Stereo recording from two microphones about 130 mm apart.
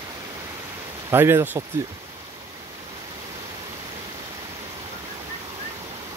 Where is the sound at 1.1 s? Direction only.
15° right (ahead or behind).